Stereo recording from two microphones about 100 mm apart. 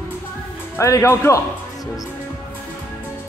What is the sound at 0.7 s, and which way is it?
Speech, 30° left (ahead or behind).